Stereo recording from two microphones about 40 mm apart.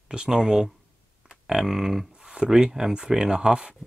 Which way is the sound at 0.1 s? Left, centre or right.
Right.